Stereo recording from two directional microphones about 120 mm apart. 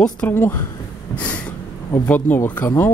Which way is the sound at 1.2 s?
10° left (ahead or behind).